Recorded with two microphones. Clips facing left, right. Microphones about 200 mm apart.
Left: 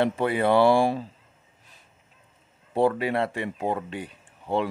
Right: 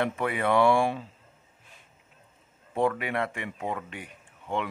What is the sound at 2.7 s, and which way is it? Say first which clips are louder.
Speech: left 4 dB; 30° left (ahead or behind).